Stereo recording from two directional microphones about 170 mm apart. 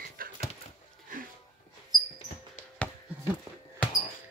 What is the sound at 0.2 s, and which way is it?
Dog, 55° right (ahead or behind).